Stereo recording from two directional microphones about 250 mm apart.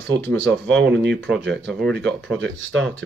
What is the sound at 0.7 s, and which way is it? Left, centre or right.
Speech, right.